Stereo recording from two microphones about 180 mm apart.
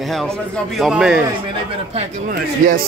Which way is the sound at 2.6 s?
50° right (ahead or behind).